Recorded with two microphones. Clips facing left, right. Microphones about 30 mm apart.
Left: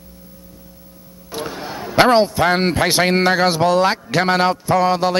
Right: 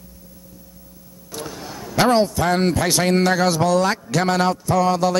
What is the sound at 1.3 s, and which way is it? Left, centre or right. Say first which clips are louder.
A man's voice: left 5 dB; left.